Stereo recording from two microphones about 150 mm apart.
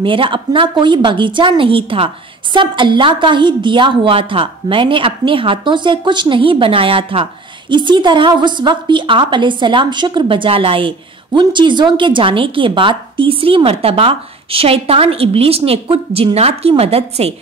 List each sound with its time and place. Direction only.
0.0 s a woman's voice: 35° right (ahead or behind)